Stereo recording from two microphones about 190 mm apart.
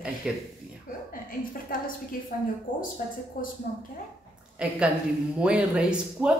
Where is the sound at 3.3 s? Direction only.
50° left (ahead or behind).